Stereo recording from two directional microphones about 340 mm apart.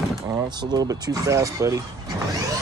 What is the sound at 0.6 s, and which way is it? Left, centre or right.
Speech, centre.